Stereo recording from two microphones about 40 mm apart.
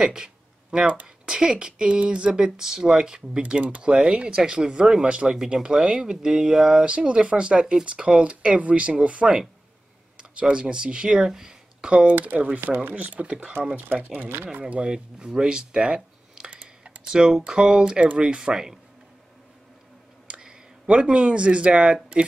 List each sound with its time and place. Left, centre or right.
0.0 s a sound: centre
1.0 s speech: centre
11.8 s speech: right
12.2 s speech: right
12.5 s speech: right
12.9 s speech: right
15.1 s computer keyboard: centre
17.4 s speech: right
18.5 s speech: centre
20.2 s speech: right